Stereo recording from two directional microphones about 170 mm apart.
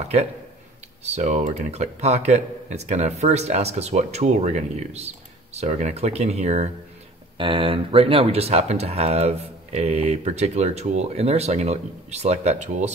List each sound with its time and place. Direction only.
1.0 s speech: 45° right (ahead or behind)